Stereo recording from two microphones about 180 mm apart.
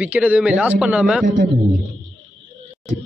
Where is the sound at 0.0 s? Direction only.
10° right (ahead or behind).